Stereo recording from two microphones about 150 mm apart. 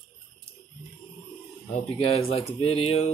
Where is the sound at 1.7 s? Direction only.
45° left (ahead or behind).